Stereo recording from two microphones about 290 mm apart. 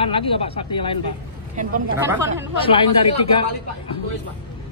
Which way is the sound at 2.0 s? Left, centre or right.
Centre.